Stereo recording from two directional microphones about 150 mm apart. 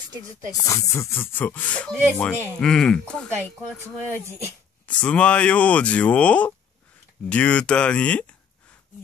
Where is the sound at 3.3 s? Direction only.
15° right (ahead or behind).